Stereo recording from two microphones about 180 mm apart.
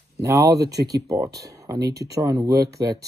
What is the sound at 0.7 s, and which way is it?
Speech, 20° right (ahead or behind).